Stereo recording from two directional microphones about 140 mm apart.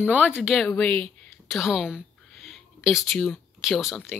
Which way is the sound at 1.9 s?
Centre (ahead or behind).